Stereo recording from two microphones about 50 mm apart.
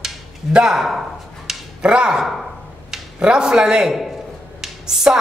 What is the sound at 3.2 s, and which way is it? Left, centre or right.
Speech, centre.